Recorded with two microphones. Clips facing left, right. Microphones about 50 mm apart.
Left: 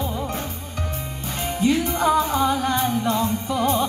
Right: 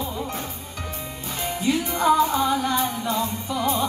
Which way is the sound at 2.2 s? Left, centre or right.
Left.